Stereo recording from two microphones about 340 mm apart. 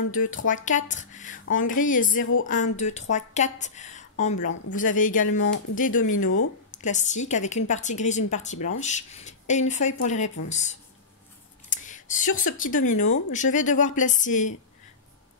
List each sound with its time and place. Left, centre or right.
0.1 s a woman's voice: left